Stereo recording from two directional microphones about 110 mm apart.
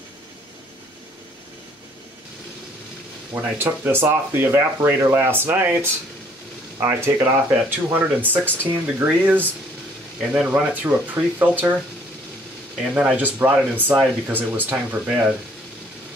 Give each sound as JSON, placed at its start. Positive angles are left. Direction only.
{"t": 3.3, "sound": "speech", "side_deg": -20}
{"t": 12.9, "sound": "speech", "side_deg": -15}